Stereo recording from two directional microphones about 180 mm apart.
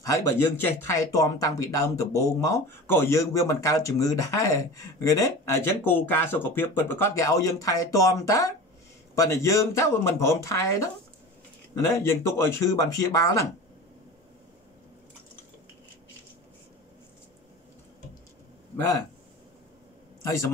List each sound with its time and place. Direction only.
0.0 s speech: 15° left (ahead or behind)